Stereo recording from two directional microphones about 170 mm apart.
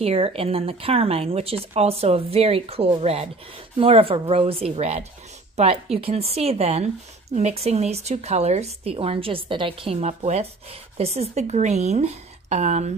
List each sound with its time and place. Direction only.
0.0 s speech: 35° right (ahead or behind)